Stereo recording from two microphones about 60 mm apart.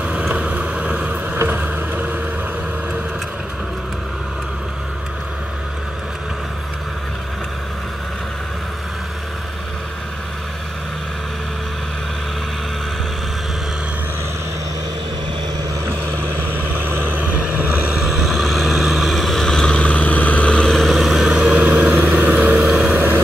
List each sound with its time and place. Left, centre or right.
0.3 s vehicle: right
1.4 s boat: right
16.8 s vehicle: right
18.0 s vehicle: centre
20.8 s vehicle: centre
21.6 s vehicle: right
22.5 s vehicle: centre